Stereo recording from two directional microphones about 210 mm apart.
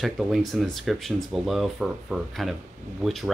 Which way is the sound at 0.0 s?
Centre (ahead or behind).